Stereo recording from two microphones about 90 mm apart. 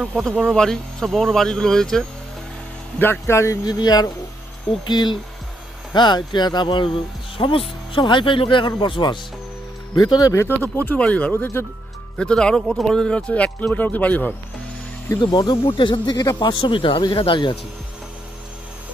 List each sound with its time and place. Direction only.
0.2 s speech: centre (ahead or behind)
3.0 s speech: 25° left (ahead or behind)
3.6 s speech: 45° left (ahead or behind)
7.3 s speech: 80° left
7.9 s speech: 65° left (ahead or behind)
9.9 s speech: 45° left (ahead or behind)
10.3 s speech: 30° left (ahead or behind)
10.6 s speech: 20° left (ahead or behind)
15.1 s speech: 55° left (ahead or behind)
15.5 s speech: 70° left (ahead or behind)
16.2 s speech: 50° left (ahead or behind); by 17.6 s 65° left (ahead or behind)